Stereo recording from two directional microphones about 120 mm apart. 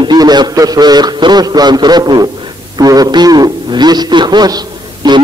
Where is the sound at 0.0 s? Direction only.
35° right (ahead or behind).